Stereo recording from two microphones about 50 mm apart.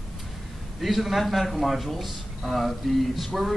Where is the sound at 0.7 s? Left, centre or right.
Centre.